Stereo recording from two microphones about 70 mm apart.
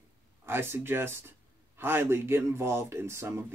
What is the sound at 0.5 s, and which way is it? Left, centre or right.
Speech, right.